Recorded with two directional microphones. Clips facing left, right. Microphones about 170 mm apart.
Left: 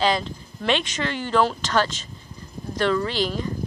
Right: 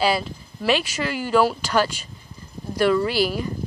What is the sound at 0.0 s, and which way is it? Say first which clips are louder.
Speech: right 1 dB; 10° right (ahead or behind).